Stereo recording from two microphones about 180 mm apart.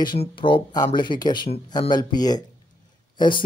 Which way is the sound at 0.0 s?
25° left (ahead or behind).